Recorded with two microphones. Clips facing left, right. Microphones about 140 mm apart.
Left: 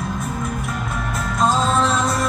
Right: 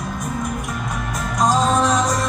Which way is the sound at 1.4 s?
15° right (ahead or behind).